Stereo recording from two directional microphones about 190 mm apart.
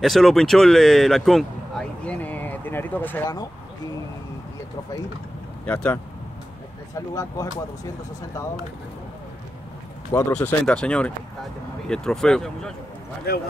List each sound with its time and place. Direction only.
0.0 s speech: centre (ahead or behind)
5.7 s speech: 5° left (ahead or behind)
7.2 s speech: 20° left (ahead or behind)
10.3 s speech: 5° left (ahead or behind)
13.3 s speech: 55° left (ahead or behind)